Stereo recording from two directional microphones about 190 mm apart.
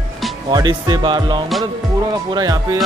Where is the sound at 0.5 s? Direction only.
20° right (ahead or behind).